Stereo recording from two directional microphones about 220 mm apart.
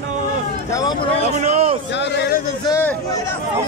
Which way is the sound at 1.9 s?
50° left (ahead or behind).